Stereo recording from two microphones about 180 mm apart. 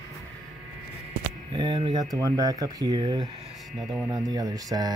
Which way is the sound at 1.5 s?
20° right (ahead or behind).